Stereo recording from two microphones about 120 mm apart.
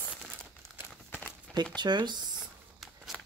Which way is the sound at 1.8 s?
35° right (ahead or behind).